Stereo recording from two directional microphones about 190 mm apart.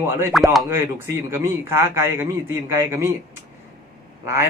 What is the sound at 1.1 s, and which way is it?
Speech, 10° right (ahead or behind).